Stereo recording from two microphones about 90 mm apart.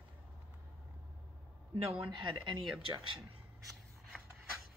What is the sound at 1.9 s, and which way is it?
Speech, 65° right (ahead or behind).